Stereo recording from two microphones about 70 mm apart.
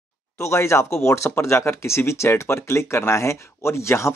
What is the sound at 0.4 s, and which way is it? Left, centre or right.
Speech, left.